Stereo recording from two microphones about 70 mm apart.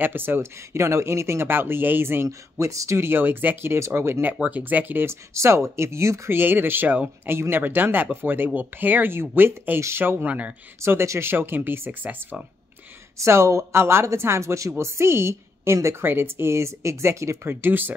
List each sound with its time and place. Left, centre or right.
0.0 s a woman's voice: right
0.7 s a woman's voice: right
2.6 s a woman's voice: right
5.3 s speech: right
6.3 s a woman's voice: right
10.2 s speech: right
10.8 s a woman's voice: right
13.2 s a woman's voice: right
17.5 s speech: right